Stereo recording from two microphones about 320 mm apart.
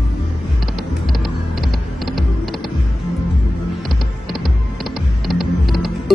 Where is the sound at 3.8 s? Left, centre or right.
Centre.